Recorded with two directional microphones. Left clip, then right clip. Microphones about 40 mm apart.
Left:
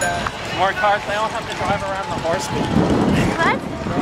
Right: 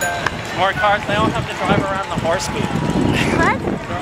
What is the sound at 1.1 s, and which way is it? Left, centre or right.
Speech, right.